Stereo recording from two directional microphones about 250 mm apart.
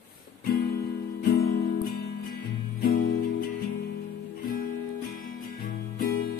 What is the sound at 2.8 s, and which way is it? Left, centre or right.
Music, left.